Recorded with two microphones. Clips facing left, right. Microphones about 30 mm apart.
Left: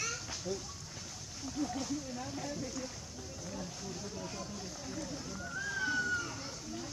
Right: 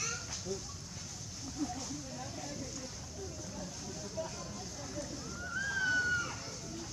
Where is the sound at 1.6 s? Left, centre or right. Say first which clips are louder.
Left 3 dB; centre.